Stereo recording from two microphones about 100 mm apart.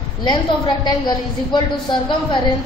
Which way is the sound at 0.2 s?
45° left (ahead or behind).